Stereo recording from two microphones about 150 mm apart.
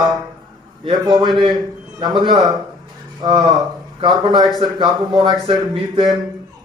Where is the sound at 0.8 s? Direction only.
30° right (ahead or behind).